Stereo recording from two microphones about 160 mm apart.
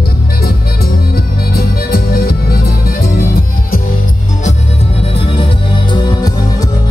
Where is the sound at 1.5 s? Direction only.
70° left (ahead or behind).